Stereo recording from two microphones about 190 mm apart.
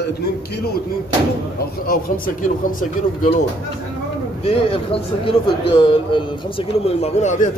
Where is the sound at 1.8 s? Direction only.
50° left (ahead or behind).